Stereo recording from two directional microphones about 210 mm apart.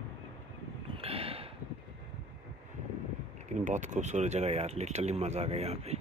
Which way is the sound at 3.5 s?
35° right (ahead or behind).